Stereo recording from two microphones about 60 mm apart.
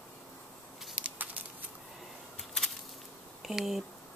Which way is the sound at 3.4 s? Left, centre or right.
Centre.